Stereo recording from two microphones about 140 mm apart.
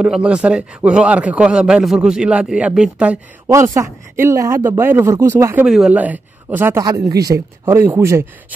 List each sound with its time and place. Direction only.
0.0 s a man's voice: 5° right (ahead or behind)
3.5 s speech: 20° right (ahead or behind)
5.7 s a man's voice: 5° right (ahead or behind)
6.8 s speech: 25° right (ahead or behind)